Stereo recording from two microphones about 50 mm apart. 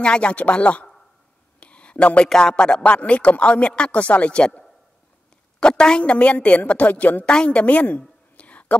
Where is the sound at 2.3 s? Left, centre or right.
Centre.